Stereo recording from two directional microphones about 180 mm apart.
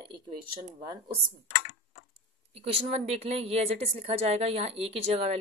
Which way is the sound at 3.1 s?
35° right (ahead or behind).